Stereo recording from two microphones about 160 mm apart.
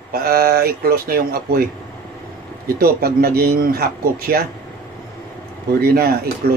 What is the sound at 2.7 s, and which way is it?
Speech, 70° right (ahead or behind).